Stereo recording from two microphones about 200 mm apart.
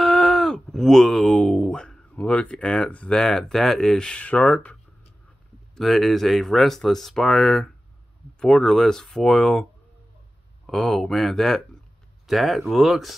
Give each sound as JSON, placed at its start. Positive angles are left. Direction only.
{"t": 0.0, "sound": "speech", "side_deg": 0}
{"t": 5.8, "sound": "speech", "side_deg": 0}
{"t": 10.7, "sound": "speech", "side_deg": 5}